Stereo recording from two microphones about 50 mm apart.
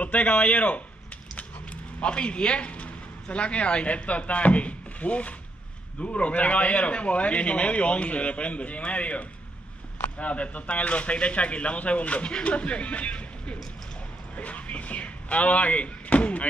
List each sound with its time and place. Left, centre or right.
0.0 s speech: left